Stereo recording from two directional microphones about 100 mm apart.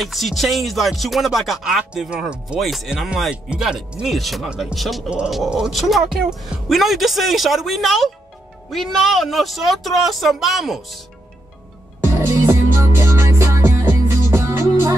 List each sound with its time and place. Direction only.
0.0 s speech: centre (ahead or behind)
12.2 s music: 25° right (ahead or behind)